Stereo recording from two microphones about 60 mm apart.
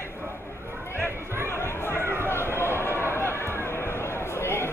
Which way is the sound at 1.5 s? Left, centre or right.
Left.